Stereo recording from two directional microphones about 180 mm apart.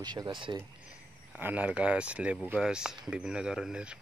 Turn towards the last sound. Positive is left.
turn(degrees=-5)  # may be behind; listen again after turning